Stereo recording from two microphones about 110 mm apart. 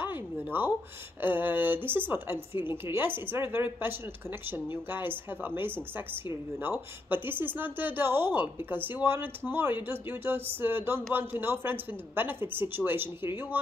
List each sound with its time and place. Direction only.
0.0 s a sound: 20° right (ahead or behind)
1.2 s a woman's voice: 20° right (ahead or behind)
7.1 s a woman's voice: 20° right (ahead or behind)